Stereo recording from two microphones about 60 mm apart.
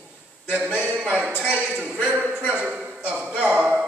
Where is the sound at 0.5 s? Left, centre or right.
Centre.